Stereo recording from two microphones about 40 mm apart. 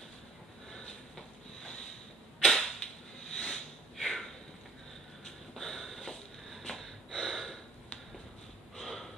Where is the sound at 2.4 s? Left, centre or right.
Centre.